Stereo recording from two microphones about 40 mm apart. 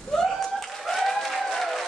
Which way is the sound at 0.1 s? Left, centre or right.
Centre.